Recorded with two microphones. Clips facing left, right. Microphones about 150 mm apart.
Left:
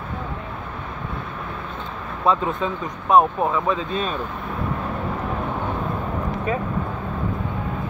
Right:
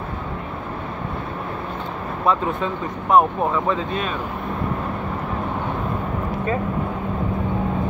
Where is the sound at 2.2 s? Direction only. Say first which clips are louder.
Even; 20° left (ahead or behind).